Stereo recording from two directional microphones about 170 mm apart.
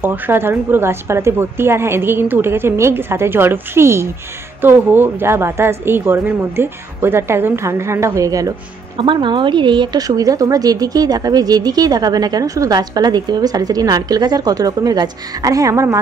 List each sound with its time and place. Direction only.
0.0 s a woman's voice: 10° right (ahead or behind)